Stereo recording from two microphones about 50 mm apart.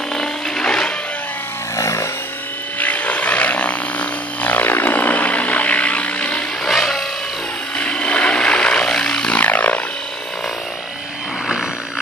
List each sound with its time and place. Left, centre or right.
0.1 s music: centre
1.8 s a sound: left
2.8 s a sound: left
6.6 s music: centre
7.7 s vehicle: left
9.4 s music: left